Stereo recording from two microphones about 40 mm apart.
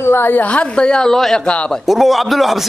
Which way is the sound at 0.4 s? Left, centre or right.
Left.